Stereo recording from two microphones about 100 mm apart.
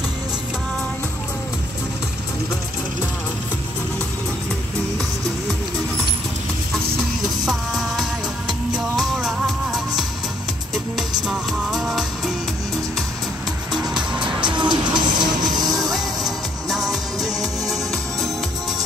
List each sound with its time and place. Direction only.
7.4 s music: centre (ahead or behind)
13.9 s music: 55° right (ahead or behind)
15.4 s music: centre (ahead or behind)